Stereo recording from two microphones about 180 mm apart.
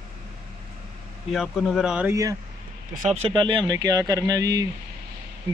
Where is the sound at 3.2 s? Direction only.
30° right (ahead or behind).